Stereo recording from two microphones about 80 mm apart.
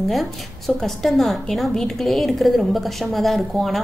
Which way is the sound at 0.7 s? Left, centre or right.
Centre.